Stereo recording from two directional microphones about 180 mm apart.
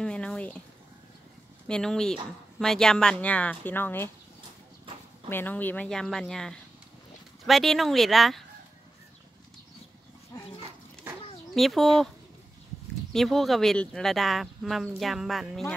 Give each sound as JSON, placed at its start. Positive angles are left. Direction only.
{"t": 0.0, "sound": "speech", "side_deg": 5}
{"t": 1.7, "sound": "speech", "side_deg": 5}
{"t": 5.3, "sound": "speech", "side_deg": 10}
{"t": 10.3, "sound": "dog", "side_deg": 20}
{"t": 11.5, "sound": "speech", "side_deg": 0}
{"t": 13.1, "sound": "speech", "side_deg": 0}